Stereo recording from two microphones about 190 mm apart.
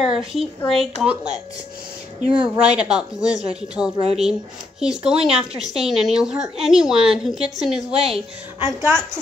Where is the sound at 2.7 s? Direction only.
5° right (ahead or behind).